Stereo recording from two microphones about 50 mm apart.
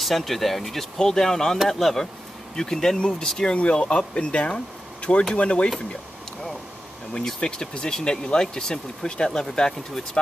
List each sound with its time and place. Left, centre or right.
0.0 s speech: centre; by 5.7 s left
7.2 s speech: centre